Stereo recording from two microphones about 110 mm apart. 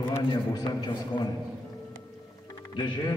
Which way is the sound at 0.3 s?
40° left (ahead or behind).